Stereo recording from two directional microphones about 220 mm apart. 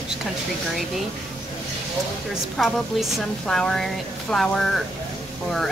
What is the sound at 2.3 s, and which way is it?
Speech, centre (ahead or behind).